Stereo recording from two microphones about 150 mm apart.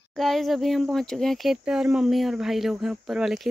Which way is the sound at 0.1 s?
Centre (ahead or behind).